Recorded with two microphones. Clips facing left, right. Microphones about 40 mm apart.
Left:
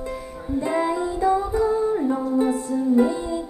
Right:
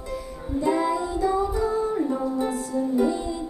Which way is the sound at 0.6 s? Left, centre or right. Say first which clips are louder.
Even; left.